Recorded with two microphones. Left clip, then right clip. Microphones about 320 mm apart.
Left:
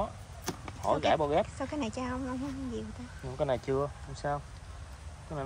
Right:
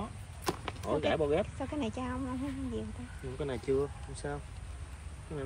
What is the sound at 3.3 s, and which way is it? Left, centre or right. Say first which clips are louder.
Speech: left 3 dB; left.